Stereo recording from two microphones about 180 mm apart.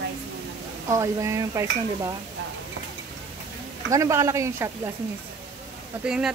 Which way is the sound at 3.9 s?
15° right (ahead or behind).